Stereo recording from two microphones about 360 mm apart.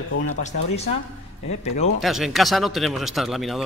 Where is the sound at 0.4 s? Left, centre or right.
Centre.